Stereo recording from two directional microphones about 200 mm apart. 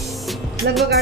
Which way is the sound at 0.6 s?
55° right (ahead or behind).